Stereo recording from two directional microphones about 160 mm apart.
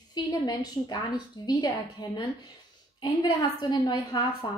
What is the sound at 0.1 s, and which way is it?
A woman's voice, 25° left (ahead or behind).